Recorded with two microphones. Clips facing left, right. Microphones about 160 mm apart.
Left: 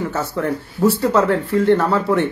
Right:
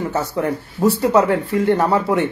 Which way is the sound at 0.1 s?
15° right (ahead or behind).